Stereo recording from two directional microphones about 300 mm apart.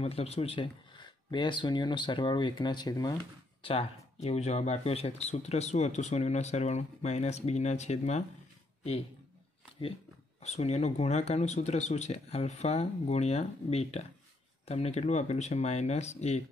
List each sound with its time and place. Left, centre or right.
0.0 s speech: centre
10.4 s speech: left